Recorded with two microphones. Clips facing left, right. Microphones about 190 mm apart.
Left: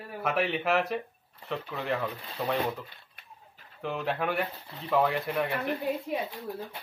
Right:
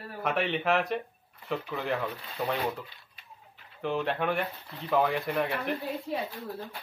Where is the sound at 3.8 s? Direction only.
Centre (ahead or behind).